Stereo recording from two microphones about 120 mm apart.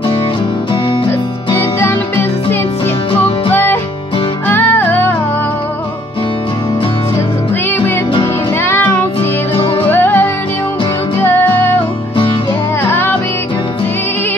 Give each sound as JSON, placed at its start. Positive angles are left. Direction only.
{"t": 1.5, "sound": "music", "side_deg": 20}
{"t": 3.5, "sound": "music", "side_deg": 15}
{"t": 8.6, "sound": "music", "side_deg": 15}
{"t": 11.3, "sound": "music", "side_deg": 15}
{"t": 12.8, "sound": "music", "side_deg": 20}